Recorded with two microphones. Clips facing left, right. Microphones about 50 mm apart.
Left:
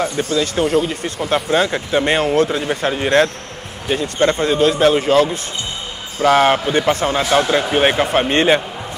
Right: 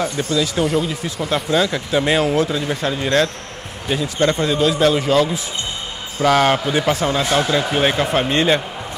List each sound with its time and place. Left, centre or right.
0.3 s speech: centre
2.0 s speech: centre
2.4 s speech: left
6.2 s a man's voice: centre
7.0 s speech: left